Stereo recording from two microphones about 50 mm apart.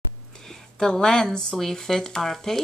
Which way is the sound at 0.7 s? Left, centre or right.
Centre.